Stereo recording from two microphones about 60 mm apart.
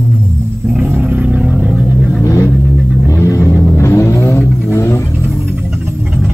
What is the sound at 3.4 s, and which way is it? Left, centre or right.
Vehicle, left.